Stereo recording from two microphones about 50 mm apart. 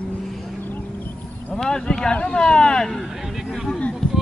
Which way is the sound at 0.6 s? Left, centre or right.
Left.